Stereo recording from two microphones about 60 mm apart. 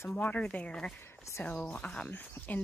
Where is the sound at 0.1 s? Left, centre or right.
Left.